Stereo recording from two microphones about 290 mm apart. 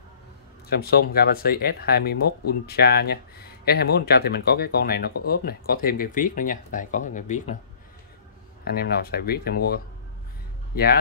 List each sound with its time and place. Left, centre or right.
0.7 s speech: left
8.6 s speech: left